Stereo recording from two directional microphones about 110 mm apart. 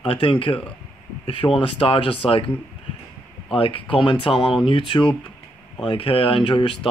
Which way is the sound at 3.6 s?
55° left (ahead or behind).